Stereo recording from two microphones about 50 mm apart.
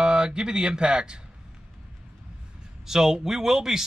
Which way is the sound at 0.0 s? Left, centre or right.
Centre.